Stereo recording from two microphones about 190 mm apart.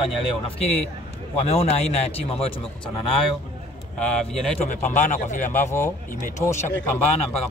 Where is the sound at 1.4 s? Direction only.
35° left (ahead or behind).